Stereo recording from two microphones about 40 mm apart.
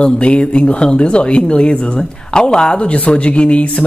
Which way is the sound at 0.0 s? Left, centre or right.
Left.